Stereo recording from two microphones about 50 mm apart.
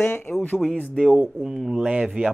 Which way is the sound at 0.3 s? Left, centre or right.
Left.